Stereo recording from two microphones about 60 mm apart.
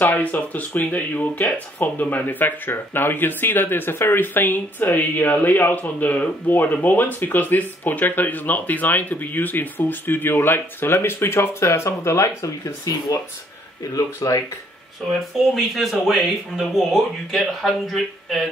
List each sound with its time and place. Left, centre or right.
0.0 s speech: left
13.9 s speech: left
15.5 s speech: centre